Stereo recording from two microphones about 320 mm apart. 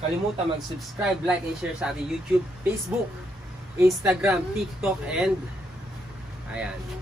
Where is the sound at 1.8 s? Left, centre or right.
Centre.